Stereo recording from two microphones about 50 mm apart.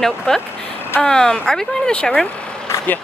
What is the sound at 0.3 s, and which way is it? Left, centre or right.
Speech, centre.